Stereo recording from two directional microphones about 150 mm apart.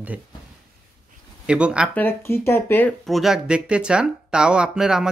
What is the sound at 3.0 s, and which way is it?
Speech, centre (ahead or behind).